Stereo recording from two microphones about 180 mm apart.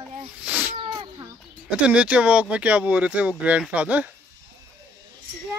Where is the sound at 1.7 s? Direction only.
5° right (ahead or behind).